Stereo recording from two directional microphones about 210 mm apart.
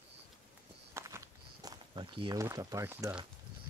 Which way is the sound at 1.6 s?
20° right (ahead or behind).